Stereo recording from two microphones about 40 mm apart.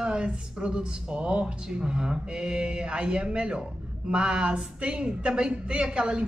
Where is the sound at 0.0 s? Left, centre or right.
Right.